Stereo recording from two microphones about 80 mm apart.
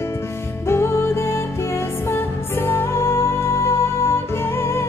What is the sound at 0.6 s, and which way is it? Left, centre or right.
Music, left.